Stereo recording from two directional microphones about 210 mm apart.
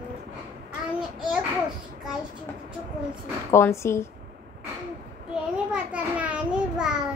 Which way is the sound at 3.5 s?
15° left (ahead or behind).